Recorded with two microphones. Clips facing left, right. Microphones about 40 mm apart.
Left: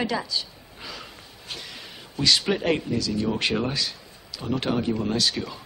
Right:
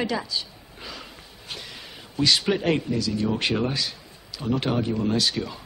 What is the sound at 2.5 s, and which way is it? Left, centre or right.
Speech, centre.